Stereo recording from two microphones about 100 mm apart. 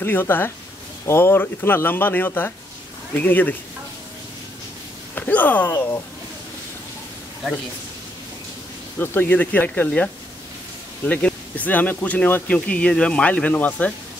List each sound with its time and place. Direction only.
0.0 s speech: 20° left (ahead or behind)
5.1 s speech: 15° left (ahead or behind)
8.9 s speech: 20° left (ahead or behind)
11.1 s speech: 15° left (ahead or behind)